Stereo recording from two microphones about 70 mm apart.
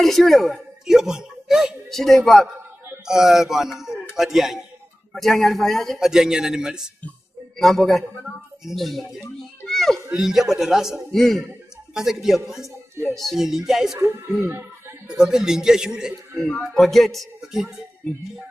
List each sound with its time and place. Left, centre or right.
0.0 s a woman's voice: centre
5.9 s a man's voice: centre
7.5 s speech: centre
9.7 s a sound: centre
10.1 s speech: centre
14.4 s a sound: right
15.0 s a man's voice: centre
16.6 s speech: centre